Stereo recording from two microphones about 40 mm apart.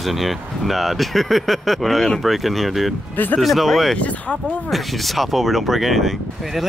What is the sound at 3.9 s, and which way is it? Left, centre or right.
Speech, left.